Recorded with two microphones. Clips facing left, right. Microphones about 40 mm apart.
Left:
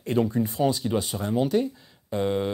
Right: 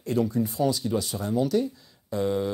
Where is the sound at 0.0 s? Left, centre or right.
Left.